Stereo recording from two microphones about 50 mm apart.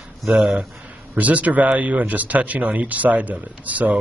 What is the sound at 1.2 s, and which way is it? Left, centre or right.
Speech, right.